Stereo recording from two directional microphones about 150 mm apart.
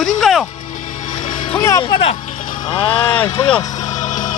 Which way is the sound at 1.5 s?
20° left (ahead or behind).